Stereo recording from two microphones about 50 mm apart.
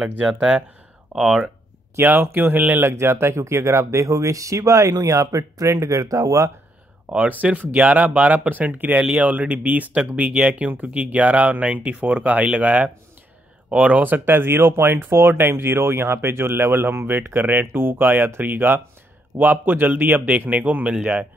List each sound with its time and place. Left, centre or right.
0.0 s speech: centre
2.0 s speech: right
2.3 s speech: right
2.9 s speech: right
7.1 s speech: right
17.4 s speech: right